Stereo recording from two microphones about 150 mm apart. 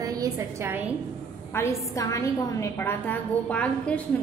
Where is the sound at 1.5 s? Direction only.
15° left (ahead or behind).